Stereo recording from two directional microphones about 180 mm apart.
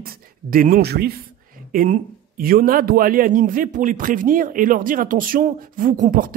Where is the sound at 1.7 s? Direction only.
50° right (ahead or behind).